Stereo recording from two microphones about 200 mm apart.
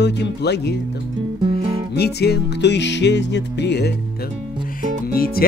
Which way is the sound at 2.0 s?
55° left (ahead or behind).